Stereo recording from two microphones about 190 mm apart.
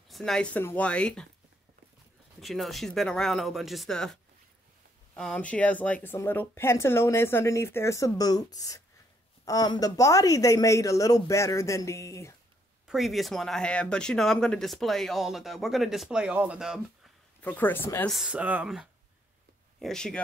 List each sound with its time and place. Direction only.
0.1 s speech: 5° left (ahead or behind)
2.4 s speech: centre (ahead or behind); by 12.4 s 15° left (ahead or behind)
12.8 s speech: centre (ahead or behind)
17.4 s speech: 10° left (ahead or behind)
18.1 s speech: 5° right (ahead or behind)